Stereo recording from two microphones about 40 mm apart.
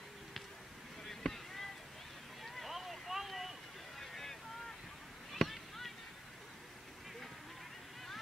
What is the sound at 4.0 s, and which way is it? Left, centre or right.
Boat, centre.